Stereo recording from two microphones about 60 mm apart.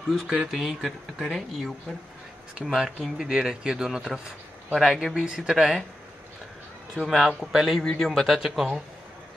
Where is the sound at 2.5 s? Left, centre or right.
Centre.